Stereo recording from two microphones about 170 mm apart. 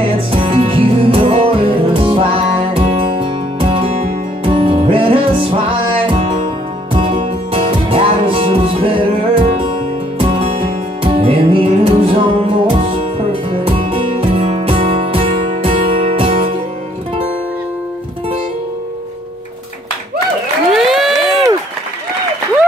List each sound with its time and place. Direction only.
0.3 s music: 30° right (ahead or behind)
20.7 s crowd: centre (ahead or behind)